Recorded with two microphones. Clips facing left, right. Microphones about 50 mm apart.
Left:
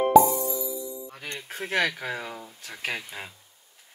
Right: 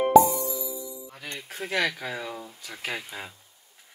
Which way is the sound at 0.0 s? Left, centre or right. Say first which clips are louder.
Even; centre.